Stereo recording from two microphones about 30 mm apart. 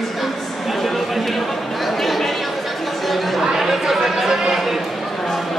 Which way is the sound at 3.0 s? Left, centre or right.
Centre.